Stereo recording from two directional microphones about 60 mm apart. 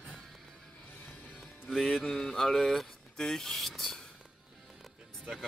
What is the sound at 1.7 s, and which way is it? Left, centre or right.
Speech, centre.